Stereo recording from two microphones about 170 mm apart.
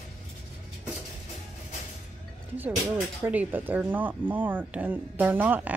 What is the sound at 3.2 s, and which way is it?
Speech, 10° right (ahead or behind).